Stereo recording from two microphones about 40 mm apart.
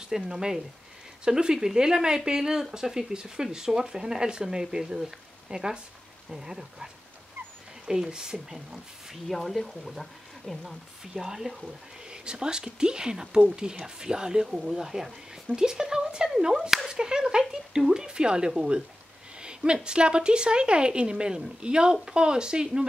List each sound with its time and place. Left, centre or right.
0.3 s speech: centre
7.9 s speech: centre
9.3 s speech: centre
11.1 s a woman's voice: centre